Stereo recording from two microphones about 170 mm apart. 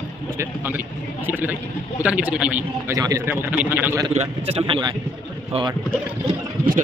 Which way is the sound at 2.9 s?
20° right (ahead or behind).